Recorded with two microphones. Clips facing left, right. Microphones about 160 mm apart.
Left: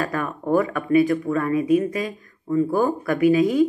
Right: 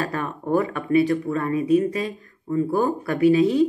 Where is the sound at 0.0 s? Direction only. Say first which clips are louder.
Left 1 dB; 30° right (ahead or behind).